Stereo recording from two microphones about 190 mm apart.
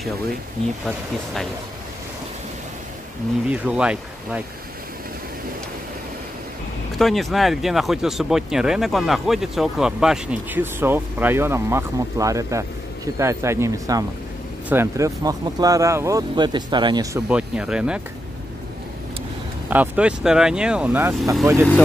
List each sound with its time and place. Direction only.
0.8 s speech: centre (ahead or behind)
3.4 s speech: 5° right (ahead or behind)
7.0 s speech: centre (ahead or behind); by 17.2 s 20° right (ahead or behind)
17.3 s speech: 5° right (ahead or behind)
19.7 s speech: 5° right (ahead or behind)